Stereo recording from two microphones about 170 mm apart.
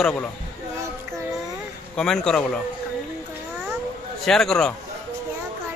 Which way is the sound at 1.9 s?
5° left (ahead or behind).